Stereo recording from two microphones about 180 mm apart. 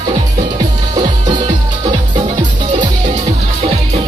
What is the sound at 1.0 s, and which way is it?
Music, 25° right (ahead or behind).